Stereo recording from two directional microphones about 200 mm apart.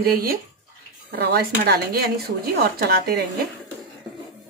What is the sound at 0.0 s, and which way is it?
A woman's voice, 45° right (ahead or behind).